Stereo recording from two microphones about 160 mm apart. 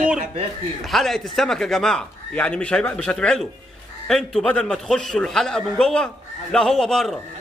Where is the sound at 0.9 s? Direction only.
Centre (ahead or behind).